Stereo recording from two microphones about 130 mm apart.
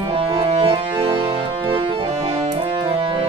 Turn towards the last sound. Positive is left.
turn(degrees=-40)  # may be behind; listen again after turning